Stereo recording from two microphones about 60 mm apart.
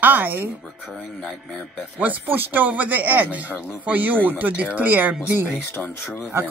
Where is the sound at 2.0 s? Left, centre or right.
Right.